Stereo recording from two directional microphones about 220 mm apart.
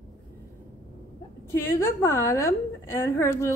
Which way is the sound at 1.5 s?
10° left (ahead or behind).